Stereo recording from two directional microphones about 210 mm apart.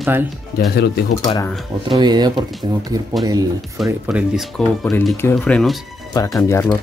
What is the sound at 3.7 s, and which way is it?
Speech, centre (ahead or behind).